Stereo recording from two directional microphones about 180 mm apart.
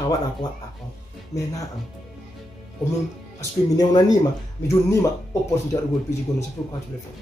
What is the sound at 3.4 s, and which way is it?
A woman's voice, 20° left (ahead or behind).